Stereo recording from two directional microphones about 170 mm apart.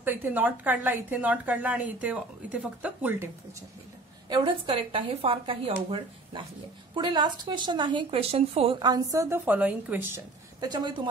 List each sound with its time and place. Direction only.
0.0 s a woman's voice: 10° right (ahead or behind)
4.3 s speech: 30° right (ahead or behind)